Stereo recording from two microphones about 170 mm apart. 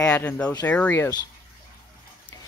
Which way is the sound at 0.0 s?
10° left (ahead or behind).